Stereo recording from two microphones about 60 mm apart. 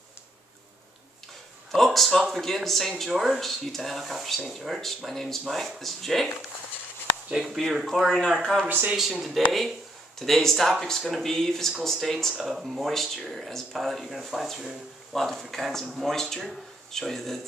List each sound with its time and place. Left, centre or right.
1.7 s speech: centre
7.3 s speech: centre
7.8 s speech: centre
8.6 s speech: right
8.9 s speech: centre